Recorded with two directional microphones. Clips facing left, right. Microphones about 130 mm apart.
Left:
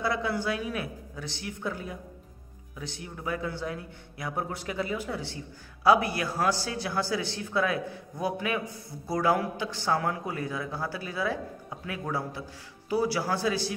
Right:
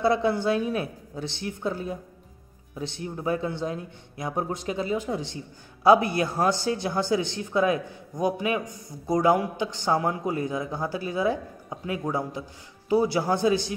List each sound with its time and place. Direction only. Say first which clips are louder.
0.0 s a man's voice: right 6 dB; 25° right (ahead or behind)